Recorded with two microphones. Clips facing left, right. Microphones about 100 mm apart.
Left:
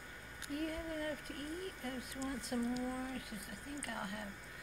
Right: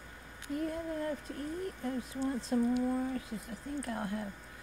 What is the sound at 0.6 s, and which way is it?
Speech, 25° right (ahead or behind).